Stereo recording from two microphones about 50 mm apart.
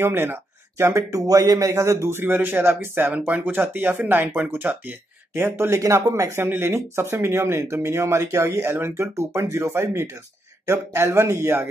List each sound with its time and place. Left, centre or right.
0.0 s speech: right
1.7 s speech: right
2.1 s speech: right
3.1 s speech: right
5.3 s speech: right
5.8 s speech: right
6.4 s speech: right
10.6 s speech: right